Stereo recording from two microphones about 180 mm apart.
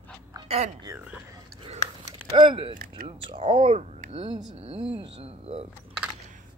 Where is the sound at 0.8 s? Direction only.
10° right (ahead or behind).